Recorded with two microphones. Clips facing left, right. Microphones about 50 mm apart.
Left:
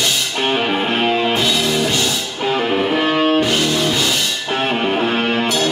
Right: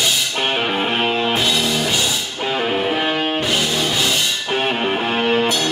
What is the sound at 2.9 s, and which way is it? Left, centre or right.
Music, centre.